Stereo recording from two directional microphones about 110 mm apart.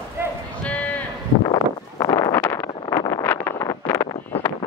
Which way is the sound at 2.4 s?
20° left (ahead or behind).